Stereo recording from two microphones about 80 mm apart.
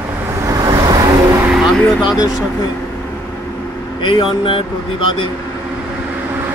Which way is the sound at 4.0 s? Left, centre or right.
Left.